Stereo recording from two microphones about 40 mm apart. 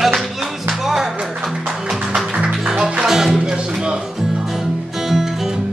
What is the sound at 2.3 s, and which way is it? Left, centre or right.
Music, right.